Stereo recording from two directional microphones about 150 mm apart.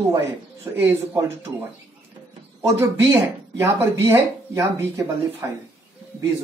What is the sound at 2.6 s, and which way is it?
Speech, 20° right (ahead or behind).